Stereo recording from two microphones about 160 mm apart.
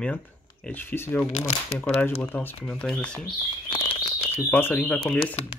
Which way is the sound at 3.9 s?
35° left (ahead or behind).